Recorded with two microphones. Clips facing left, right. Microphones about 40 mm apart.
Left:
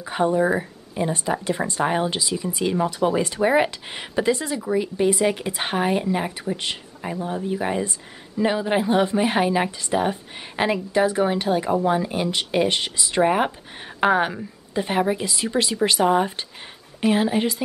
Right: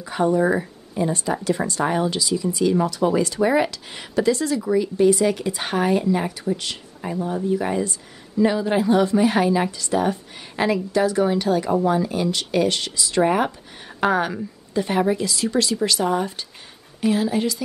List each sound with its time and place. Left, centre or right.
0.0 s speech: left
0.4 s speech: centre
0.9 s speech: left